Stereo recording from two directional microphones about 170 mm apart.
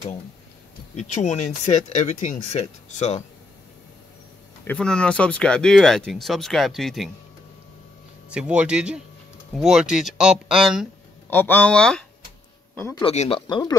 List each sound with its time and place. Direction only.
0.9 s speech: 45° left (ahead or behind)
4.6 s speech: 5° left (ahead or behind)
8.3 s speech: 5° right (ahead or behind)
11.2 s speech: 10° left (ahead or behind)
13.0 s speech: 35° left (ahead or behind)
13.5 s speech: 25° left (ahead or behind)